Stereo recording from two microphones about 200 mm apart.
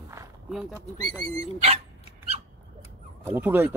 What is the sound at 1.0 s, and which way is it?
Speech, 30° right (ahead or behind).